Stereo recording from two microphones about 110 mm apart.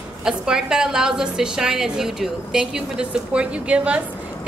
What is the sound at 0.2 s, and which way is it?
A woman's voice, 5° right (ahead or behind).